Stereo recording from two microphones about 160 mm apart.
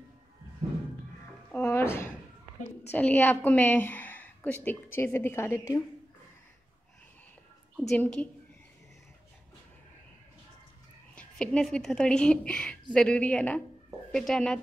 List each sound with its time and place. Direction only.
1.5 s drawer open or close: 15° left (ahead or behind)
2.9 s a woman's voice: 10° left (ahead or behind)
7.9 s a woman's voice: 10° left (ahead or behind)
11.1 s a woman's voice: 5° left (ahead or behind)